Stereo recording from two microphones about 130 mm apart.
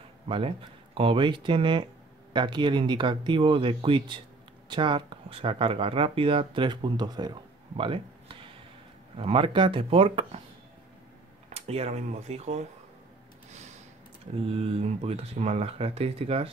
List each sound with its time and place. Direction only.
0.3 s speech: 45° right (ahead or behind)
11.5 s speech: 50° right (ahead or behind)
13.5 s a sound: 60° right (ahead or behind)
14.5 s speech: 50° right (ahead or behind)